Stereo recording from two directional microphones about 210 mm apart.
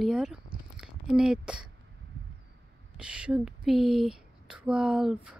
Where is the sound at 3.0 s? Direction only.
5° right (ahead or behind).